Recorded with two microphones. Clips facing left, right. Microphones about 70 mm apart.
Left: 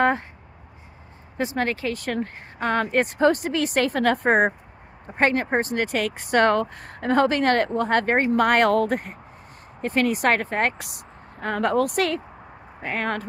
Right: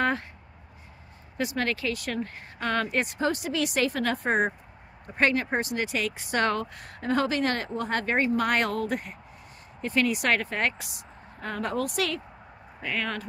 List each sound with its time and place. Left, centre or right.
1.4 s speech: left
5.0 s speech: left
10.8 s a woman's voice: left